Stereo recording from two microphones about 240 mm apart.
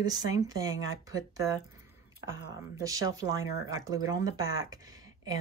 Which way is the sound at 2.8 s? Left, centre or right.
Centre.